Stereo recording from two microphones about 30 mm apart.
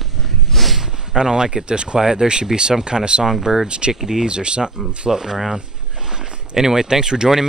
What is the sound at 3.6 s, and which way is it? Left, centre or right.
Speech, right.